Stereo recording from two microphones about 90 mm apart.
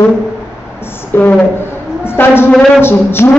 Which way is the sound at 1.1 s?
25° left (ahead or behind).